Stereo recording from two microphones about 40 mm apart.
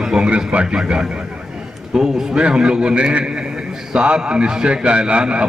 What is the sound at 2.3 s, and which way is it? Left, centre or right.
A man's voice, right.